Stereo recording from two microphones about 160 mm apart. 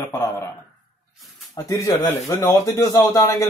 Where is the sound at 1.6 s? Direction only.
25° left (ahead or behind).